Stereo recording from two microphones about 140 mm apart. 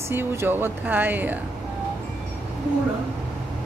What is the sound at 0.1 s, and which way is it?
Speech, 15° right (ahead or behind).